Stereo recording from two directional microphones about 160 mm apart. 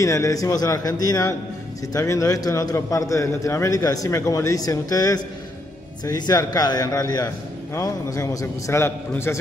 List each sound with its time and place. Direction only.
0.0 s a man's voice: 20° left (ahead or behind)